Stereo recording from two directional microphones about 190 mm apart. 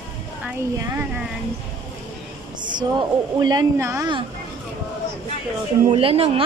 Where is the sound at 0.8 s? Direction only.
10° right (ahead or behind).